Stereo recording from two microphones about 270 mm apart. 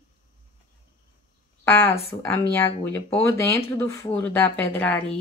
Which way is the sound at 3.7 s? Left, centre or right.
Centre.